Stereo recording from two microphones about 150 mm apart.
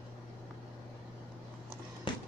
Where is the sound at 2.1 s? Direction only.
30° left (ahead or behind).